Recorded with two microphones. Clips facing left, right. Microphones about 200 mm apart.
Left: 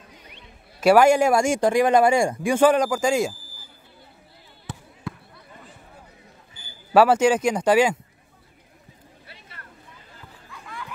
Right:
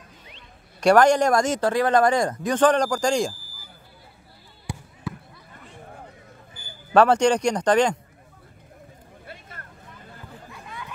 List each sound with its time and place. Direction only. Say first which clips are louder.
0.7 s speech: left 1 dB; 5° left (ahead or behind)
4.7 s fireworks: right 3 dB; 10° right (ahead or behind)
6.9 s speech: left 1 dB; 5° left (ahead or behind)
9.2 s vehicle: right 6 dB; 50° right (ahead or behind)
10.5 s a sound: left 3 dB; 20° right (ahead or behind)